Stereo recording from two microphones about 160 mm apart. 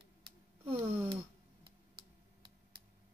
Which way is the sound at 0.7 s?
30° right (ahead or behind).